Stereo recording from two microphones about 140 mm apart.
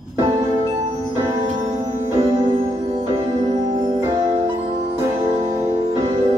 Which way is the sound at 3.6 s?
25° right (ahead or behind).